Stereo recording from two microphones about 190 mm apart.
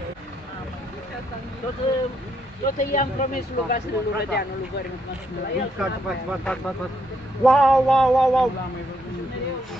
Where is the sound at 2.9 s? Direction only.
45° left (ahead or behind).